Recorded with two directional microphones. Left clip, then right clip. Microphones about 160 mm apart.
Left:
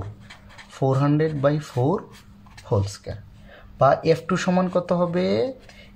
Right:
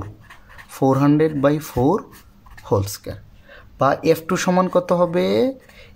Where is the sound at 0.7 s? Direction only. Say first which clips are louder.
Right 5 dB; 35° right (ahead or behind).